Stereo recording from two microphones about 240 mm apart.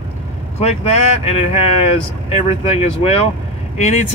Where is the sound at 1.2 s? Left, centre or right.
Left.